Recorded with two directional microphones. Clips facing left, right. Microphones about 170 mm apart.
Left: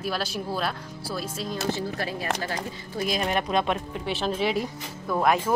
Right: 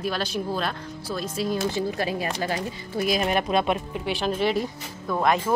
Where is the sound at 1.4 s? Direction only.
15° right (ahead or behind).